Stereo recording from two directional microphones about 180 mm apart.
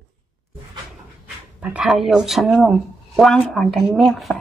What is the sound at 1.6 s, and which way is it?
Speech, 5° right (ahead or behind).